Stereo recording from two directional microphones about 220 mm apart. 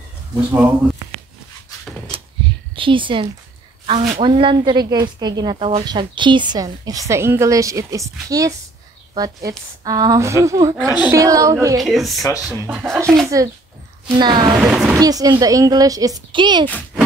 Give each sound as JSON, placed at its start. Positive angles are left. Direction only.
{"t": 0.5, "sound": "a woman's voice", "side_deg": -10}
{"t": 2.7, "sound": "a woman's voice", "side_deg": -25}
{"t": 11.8, "sound": "speech", "side_deg": 0}
{"t": 13.3, "sound": "a woman's voice", "side_deg": -15}
{"t": 14.6, "sound": "speech", "side_deg": -5}
{"t": 15.0, "sound": "a woman's voice", "side_deg": -15}
{"t": 16.6, "sound": "speech", "side_deg": 5}